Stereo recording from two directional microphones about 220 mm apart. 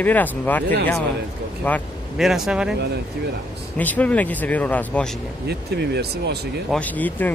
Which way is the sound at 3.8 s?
5° left (ahead or behind).